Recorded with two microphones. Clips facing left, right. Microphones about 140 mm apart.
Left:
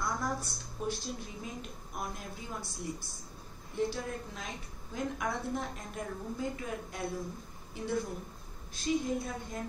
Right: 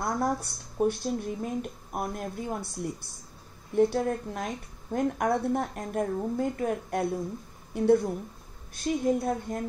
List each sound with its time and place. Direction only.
0.0 s speech: 60° right (ahead or behind)